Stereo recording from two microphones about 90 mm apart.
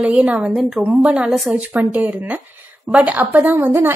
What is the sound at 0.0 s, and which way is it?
A woman's voice, 15° right (ahead or behind).